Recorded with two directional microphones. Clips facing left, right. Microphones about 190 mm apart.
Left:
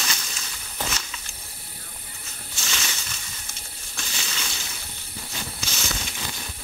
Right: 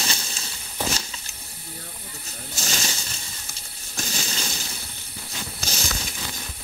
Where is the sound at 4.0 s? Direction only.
40° right (ahead or behind).